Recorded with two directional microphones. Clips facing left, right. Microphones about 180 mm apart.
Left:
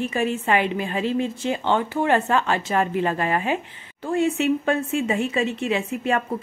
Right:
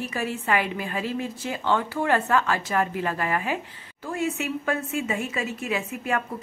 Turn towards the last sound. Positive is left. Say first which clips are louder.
# left 4 dB
turn(degrees=25)  # may be behind; listen again after turning